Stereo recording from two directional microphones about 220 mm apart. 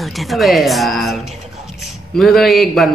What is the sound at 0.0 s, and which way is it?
A man's voice, centre (ahead or behind).